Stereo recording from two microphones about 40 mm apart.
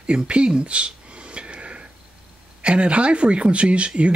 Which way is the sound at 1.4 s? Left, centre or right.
Right.